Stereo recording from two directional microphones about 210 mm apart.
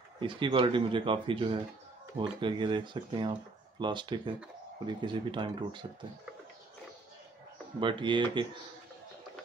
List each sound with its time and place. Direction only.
0.2 s speech: 25° right (ahead or behind)
7.8 s speech: 20° right (ahead or behind)